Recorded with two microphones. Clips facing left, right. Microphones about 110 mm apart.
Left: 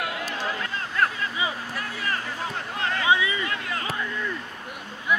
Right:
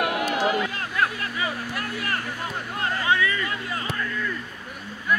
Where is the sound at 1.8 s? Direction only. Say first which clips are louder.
Left 1 dB; 60° right (ahead or behind).